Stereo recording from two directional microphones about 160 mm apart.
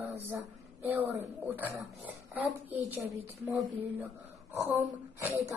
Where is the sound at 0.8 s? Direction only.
15° right (ahead or behind).